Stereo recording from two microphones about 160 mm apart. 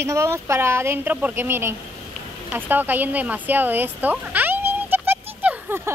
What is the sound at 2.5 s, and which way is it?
Fowl, 10° right (ahead or behind).